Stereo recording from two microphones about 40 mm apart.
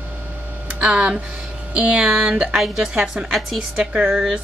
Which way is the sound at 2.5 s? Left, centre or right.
Centre.